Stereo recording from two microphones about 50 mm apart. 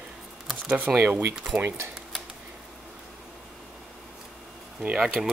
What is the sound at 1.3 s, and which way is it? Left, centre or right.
Speech, centre.